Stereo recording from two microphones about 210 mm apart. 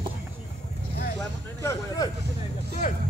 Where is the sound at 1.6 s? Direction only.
15° left (ahead or behind).